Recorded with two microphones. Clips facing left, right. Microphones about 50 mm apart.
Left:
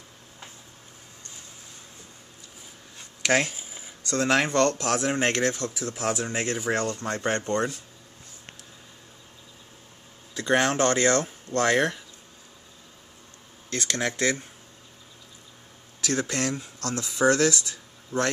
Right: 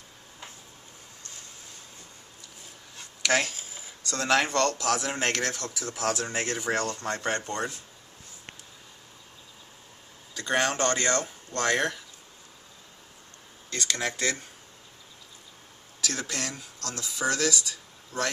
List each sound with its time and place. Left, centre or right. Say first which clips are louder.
3.2 s a sound: left 2 dB; left
4.5 s speech: left 3 dB; left
7.3 s speech: left 5 dB; left
10.3 s speech: left 4 dB; centre
13.7 s speech: left 2 dB; centre
16.1 s speech: left 7 dB; centre
16.5 s speech: left 6 dB; left